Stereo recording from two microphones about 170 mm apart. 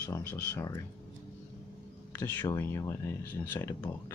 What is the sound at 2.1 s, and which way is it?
Speech, 10° left (ahead or behind).